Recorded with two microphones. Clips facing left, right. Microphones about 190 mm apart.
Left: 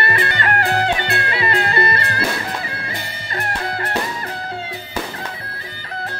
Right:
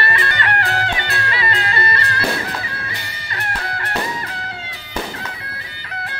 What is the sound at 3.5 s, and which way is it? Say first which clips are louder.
Music: left 2 dB; 30° left (ahead or behind).